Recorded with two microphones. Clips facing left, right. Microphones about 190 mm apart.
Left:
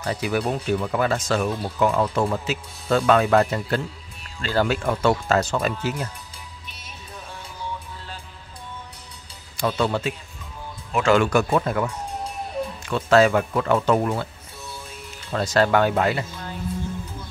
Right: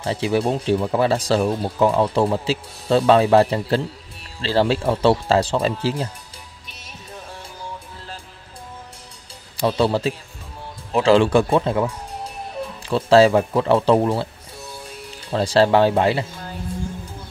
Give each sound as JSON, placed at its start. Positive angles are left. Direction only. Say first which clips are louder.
{"t": 0.0, "sound": "speech", "louder": "right 4 dB", "side_deg": -30}
{"t": 9.6, "sound": "speech", "louder": "right 4 dB", "side_deg": -30}
{"t": 15.3, "sound": "speech", "louder": "right 4 dB", "side_deg": -30}